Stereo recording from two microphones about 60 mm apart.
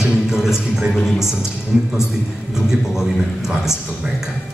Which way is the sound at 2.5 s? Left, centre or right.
Centre.